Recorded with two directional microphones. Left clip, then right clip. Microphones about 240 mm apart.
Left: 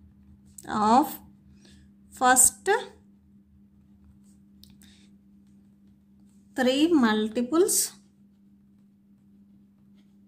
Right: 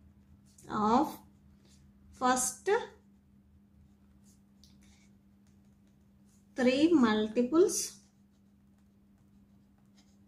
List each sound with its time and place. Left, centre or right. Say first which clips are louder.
0.7 s a woman's voice: left 7 dB; left
6.5 s a woman's voice: left 4 dB; left